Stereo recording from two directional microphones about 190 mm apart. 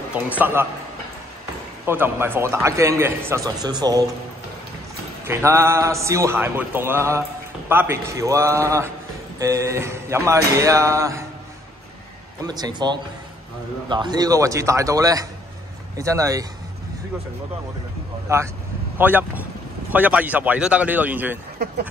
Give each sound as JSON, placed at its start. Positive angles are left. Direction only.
{"t": 0.1, "sound": "a man's voice", "side_deg": -10}
{"t": 1.9, "sound": "a man's voice", "side_deg": -10}
{"t": 5.2, "sound": "a man's voice", "side_deg": -15}
{"t": 12.4, "sound": "a man's voice", "side_deg": -20}
{"t": 18.3, "sound": "a man's voice", "side_deg": -15}